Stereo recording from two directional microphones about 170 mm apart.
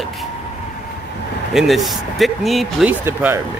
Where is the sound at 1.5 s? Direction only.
Centre (ahead or behind).